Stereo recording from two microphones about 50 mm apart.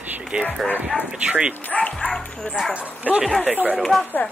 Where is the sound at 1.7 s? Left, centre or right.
Left.